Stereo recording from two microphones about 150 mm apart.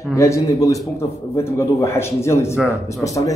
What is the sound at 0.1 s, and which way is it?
A man's voice, 20° left (ahead or behind).